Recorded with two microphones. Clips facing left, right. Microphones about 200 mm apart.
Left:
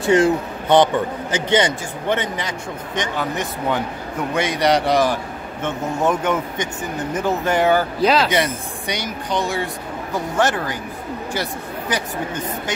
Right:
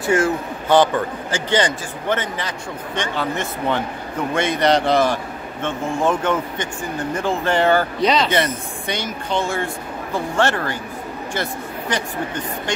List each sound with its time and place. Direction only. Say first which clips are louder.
0.1 s a man's voice: left 3 dB; 20° left (ahead or behind)